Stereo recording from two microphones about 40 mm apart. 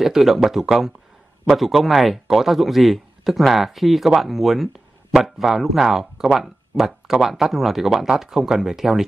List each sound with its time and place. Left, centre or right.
0.0 s a man's voice: centre